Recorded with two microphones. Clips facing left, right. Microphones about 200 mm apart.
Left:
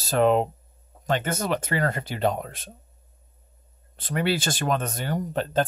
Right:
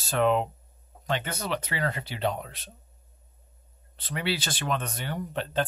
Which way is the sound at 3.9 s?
50° left (ahead or behind).